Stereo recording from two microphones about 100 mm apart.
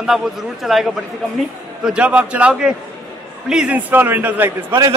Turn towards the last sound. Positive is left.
turn(degrees=-20)  # may be behind; listen again after turning